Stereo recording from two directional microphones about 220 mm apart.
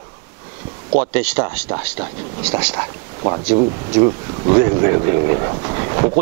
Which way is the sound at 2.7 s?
25° right (ahead or behind).